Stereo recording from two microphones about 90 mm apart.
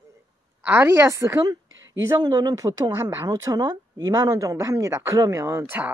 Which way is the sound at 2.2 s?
50° right (ahead or behind).